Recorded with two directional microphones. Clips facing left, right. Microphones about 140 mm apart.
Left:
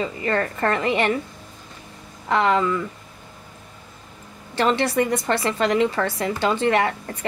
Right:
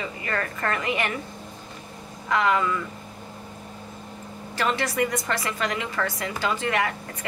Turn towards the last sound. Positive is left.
turn(degrees=30)  # may be behind; listen again after turning